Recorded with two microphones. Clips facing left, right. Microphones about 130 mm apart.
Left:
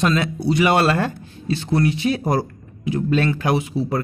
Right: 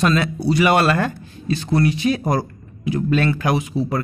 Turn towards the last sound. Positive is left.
turn(degrees=25)  # may be behind; listen again after turning